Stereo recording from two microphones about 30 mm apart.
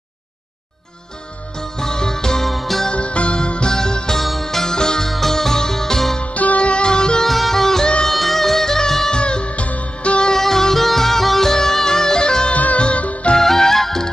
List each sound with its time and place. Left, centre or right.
1.6 s music: centre
2.4 s music: centre
2.9 s music: left
4.2 s music: centre
6.2 s music: left
6.6 s music: left
7.2 s music: centre
9.1 s music: left
10.3 s music: centre
12.7 s music: left
13.0 s music: left
13.4 s music: centre